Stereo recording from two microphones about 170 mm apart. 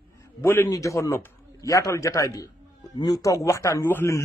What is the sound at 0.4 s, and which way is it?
A man's voice, 15° left (ahead or behind).